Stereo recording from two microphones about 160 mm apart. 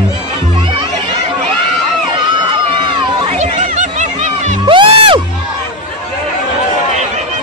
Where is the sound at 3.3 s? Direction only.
45° right (ahead or behind).